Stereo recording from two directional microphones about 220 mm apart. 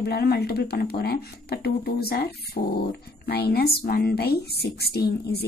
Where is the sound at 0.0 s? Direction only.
45° left (ahead or behind).